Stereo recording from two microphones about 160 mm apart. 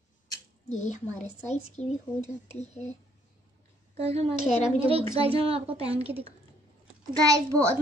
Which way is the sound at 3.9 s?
40° right (ahead or behind).